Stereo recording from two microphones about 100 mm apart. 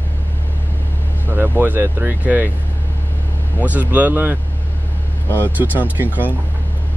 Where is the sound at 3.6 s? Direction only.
15° right (ahead or behind).